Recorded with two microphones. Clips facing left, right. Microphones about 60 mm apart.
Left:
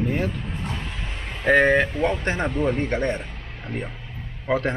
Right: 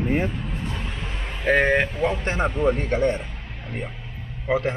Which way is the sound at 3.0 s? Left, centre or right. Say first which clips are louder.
Right 3 dB; left.